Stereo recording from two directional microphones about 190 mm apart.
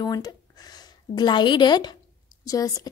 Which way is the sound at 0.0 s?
20° left (ahead or behind).